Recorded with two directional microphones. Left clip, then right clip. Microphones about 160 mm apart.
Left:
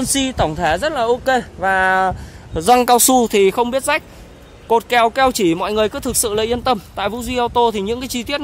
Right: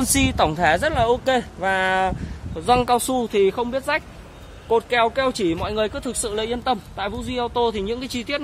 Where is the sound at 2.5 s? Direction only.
65° left (ahead or behind); by 4.0 s 90° left.